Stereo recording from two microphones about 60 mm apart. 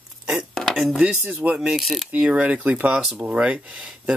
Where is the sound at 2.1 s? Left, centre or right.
Right.